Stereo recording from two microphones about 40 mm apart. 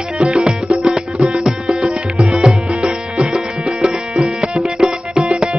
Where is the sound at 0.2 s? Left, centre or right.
Right.